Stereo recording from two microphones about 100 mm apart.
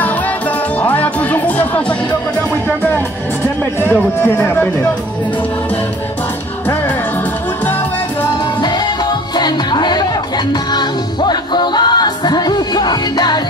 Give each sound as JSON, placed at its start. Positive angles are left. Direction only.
{"t": 0.7, "sound": "music", "side_deg": 15}
{"t": 3.8, "sound": "speech", "side_deg": 20}
{"t": 9.4, "sound": "music", "side_deg": 45}